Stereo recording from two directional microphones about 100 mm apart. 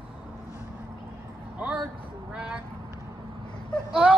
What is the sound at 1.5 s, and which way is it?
Speech, 10° right (ahead or behind).